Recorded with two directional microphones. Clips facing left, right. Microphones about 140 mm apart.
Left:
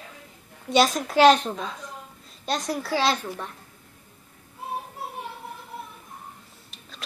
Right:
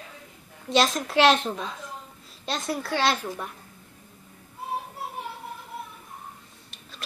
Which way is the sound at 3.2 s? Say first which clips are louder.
Right 1 dB; 15° right (ahead or behind).